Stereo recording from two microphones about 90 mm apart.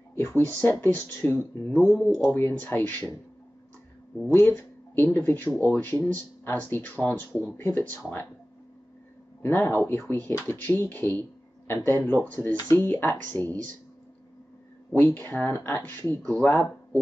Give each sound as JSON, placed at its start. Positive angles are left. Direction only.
{"t": 0.2, "sound": "speech", "side_deg": 20}
{"t": 4.3, "sound": "speech", "side_deg": 25}
{"t": 9.5, "sound": "speech", "side_deg": 25}
{"t": 15.0, "sound": "speech", "side_deg": 20}